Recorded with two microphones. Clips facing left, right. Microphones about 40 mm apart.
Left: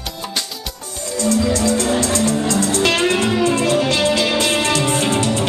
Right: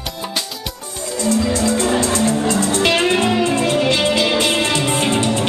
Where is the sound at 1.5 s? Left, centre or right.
Right.